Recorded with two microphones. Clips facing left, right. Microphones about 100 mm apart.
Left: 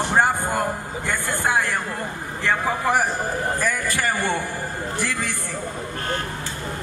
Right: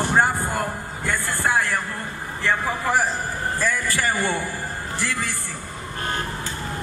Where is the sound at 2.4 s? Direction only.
20° left (ahead or behind).